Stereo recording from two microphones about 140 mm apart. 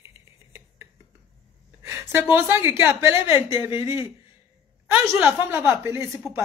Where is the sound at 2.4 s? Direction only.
15° right (ahead or behind).